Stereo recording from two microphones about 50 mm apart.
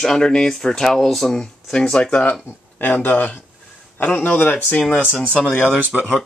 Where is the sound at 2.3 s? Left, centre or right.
Left.